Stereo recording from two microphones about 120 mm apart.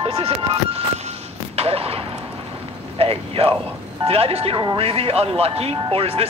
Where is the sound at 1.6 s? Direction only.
55° right (ahead or behind).